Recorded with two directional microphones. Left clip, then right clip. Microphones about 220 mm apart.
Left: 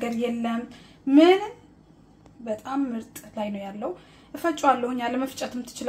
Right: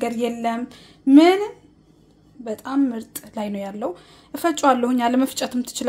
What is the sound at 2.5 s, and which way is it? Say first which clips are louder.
Speech: right 5 dB; 45° right (ahead or behind).